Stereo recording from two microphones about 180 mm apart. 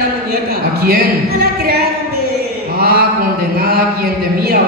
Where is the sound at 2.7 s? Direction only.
55° right (ahead or behind).